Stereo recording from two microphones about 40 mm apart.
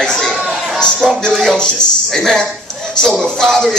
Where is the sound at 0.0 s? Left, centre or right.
Centre.